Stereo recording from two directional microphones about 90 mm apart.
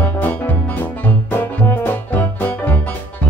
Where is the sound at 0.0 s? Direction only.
20° left (ahead or behind).